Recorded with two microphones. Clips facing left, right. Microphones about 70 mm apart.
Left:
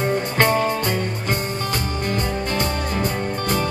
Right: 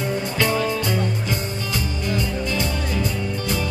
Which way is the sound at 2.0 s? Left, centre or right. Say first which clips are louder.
Even; left.